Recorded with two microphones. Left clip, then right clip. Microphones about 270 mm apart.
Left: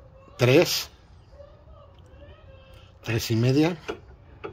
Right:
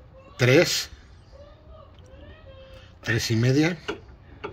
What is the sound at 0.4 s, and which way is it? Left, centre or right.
Speech, centre.